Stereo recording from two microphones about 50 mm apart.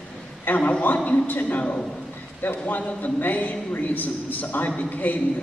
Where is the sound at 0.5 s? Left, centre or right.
Left.